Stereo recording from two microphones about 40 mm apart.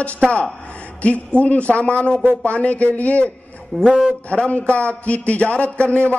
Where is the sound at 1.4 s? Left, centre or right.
Left.